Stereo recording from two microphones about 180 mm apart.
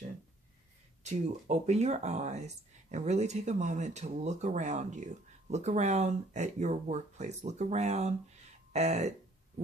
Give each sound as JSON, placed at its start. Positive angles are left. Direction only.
{"t": 1.0, "sound": "speech", "side_deg": -40}